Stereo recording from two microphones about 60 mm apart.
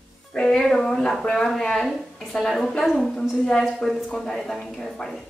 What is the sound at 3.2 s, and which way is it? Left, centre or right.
A woman's voice, centre.